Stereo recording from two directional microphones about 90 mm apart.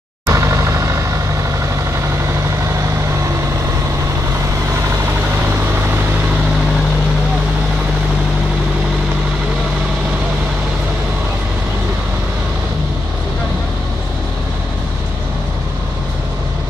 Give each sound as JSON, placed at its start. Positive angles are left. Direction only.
{"t": 0.3, "sound": "vehicle", "side_deg": -30}